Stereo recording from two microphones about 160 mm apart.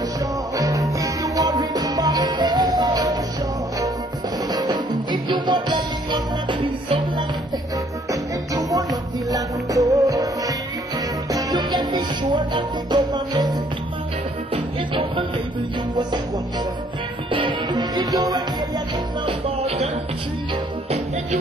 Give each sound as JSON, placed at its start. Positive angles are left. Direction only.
{"t": 0.6, "sound": "music", "side_deg": -20}
{"t": 4.5, "sound": "music", "side_deg": -25}
{"t": 17.3, "sound": "music", "side_deg": -30}
{"t": 19.2, "sound": "music", "side_deg": -40}